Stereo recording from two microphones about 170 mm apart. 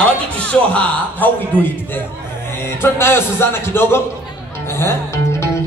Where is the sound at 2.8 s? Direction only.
15° left (ahead or behind).